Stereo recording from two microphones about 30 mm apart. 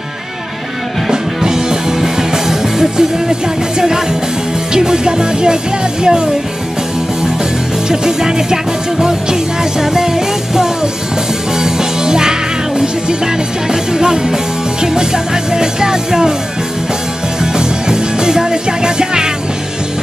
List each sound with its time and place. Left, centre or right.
1.1 s music: right
7.9 s music: centre
17.4 s music: right